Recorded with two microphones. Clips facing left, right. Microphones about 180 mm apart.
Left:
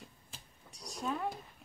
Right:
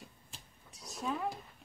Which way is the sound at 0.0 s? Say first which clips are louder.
Even; centre (ahead or behind).